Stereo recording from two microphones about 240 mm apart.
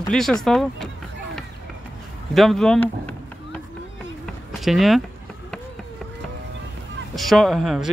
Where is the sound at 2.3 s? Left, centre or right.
Centre.